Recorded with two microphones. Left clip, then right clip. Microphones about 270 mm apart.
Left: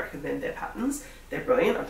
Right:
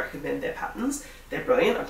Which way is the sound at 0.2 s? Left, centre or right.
Centre.